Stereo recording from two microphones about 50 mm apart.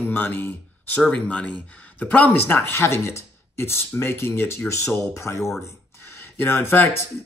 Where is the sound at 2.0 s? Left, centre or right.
Left.